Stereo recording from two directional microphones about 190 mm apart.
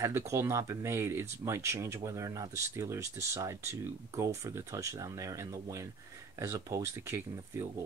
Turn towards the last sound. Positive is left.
turn(degrees=-15)  # may be behind; listen again after turning